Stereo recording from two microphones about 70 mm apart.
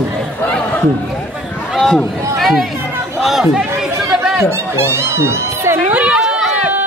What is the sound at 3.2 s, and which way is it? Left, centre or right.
Chatter, centre.